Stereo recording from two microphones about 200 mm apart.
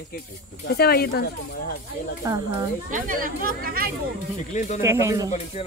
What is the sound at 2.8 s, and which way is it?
Speech, 40° right (ahead or behind).